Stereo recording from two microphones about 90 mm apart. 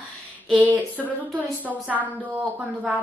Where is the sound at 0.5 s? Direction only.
20° right (ahead or behind).